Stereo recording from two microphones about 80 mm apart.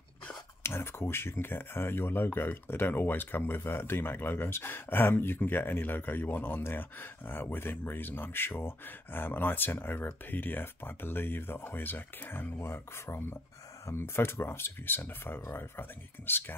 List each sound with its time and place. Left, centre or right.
0.7 s speech: left